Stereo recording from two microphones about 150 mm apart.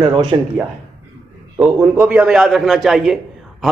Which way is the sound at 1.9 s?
10° right (ahead or behind).